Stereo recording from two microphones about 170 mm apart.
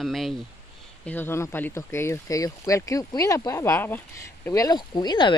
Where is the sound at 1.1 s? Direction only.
10° left (ahead or behind).